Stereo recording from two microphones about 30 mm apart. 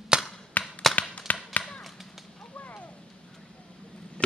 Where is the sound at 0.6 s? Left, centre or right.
Left.